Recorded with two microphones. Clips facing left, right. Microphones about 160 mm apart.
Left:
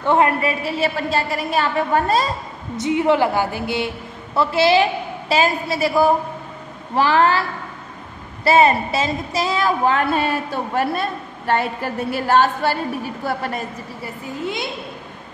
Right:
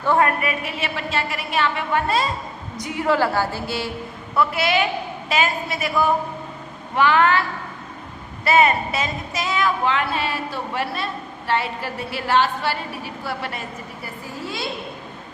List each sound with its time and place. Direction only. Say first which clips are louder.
0.0 s a woman's voice: left 2 dB; 20° left (ahead or behind); by 2.2 s 40° left (ahead or behind)
2.8 s a woman's voice: left 4 dB; 20° left (ahead or behind)
4.4 s a woman's voice: left 5 dB; 30° left (ahead or behind)
8.5 s a woman's voice: left 3 dB; 30° left (ahead or behind)
14.0 s a woman's voice: left 6 dB; 20° left (ahead or behind)